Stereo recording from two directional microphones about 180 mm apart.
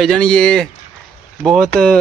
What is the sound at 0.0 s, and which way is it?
Speech, 5° left (ahead or behind).